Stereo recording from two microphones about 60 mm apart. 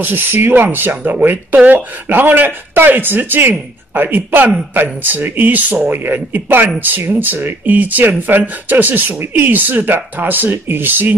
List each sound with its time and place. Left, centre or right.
0.0 s speech: right